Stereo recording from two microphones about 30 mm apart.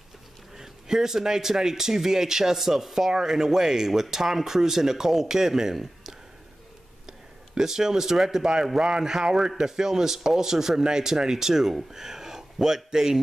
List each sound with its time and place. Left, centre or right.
0.6 s speech: centre